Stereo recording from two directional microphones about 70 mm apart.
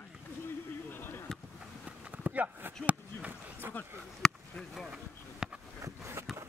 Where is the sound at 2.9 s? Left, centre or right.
Right.